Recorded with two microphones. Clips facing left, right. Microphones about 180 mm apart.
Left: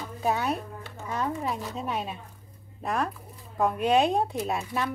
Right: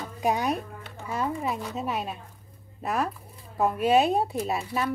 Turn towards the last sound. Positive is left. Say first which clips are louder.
# right 1 dB
turn(degrees=0)  # may be behind; listen again after turning